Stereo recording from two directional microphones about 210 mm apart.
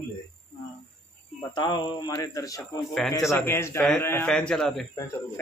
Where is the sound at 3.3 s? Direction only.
10° left (ahead or behind).